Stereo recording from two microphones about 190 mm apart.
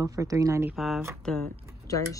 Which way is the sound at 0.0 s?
15° right (ahead or behind).